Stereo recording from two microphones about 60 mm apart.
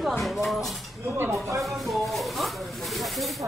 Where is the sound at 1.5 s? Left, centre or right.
Centre.